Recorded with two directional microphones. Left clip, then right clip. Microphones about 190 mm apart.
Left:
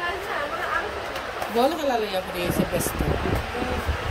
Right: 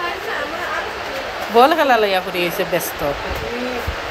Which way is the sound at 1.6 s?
5° left (ahead or behind).